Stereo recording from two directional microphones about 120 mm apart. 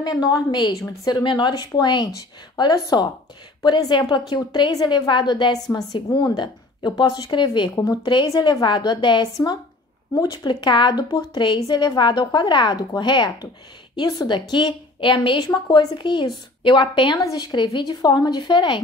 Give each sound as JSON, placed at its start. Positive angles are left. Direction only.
{"t": 0.0, "sound": "a woman's voice", "side_deg": 35}